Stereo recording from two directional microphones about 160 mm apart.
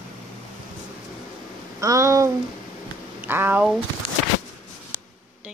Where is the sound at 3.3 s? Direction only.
15° right (ahead or behind).